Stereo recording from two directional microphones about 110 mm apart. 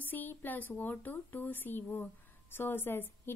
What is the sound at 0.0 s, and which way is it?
A woman's voice, 15° left (ahead or behind).